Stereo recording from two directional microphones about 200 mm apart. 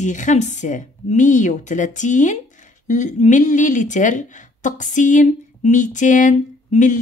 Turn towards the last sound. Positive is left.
turn(degrees=40)  # may be behind; listen again after turning